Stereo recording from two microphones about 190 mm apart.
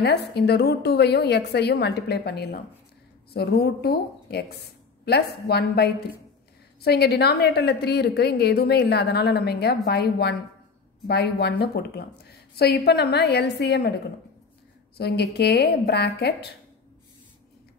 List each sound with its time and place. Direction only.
0.0 s a woman's voice: 60° left (ahead or behind)
15.0 s a woman's voice: 60° left (ahead or behind)